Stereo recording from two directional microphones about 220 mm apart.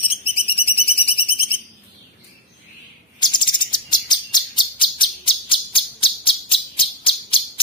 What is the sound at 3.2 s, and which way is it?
Chirp, 20° left (ahead or behind).